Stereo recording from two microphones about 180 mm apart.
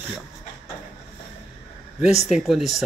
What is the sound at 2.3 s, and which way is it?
Speech, centre (ahead or behind).